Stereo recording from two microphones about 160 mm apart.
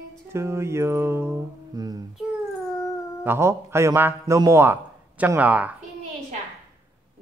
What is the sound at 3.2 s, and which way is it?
Speech, 15° right (ahead or behind).